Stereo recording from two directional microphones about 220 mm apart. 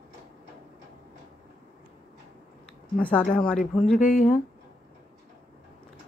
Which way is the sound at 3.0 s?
5° left (ahead or behind).